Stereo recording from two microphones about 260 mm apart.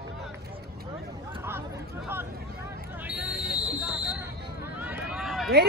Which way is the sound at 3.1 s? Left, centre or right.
Centre.